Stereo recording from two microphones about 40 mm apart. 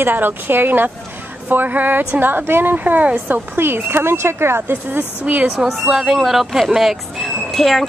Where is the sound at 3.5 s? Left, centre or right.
Right.